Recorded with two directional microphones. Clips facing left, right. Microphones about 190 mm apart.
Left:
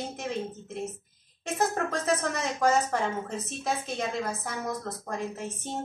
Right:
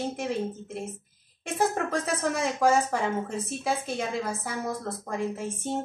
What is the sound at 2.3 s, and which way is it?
Speech, 10° right (ahead or behind).